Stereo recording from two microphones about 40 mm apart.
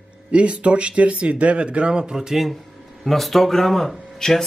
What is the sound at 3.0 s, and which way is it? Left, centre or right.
Speech, centre.